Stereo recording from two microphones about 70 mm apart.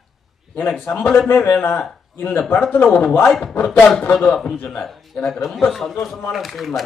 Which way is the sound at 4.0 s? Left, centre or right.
Left.